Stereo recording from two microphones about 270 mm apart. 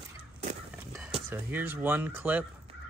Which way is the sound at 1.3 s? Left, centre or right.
Centre.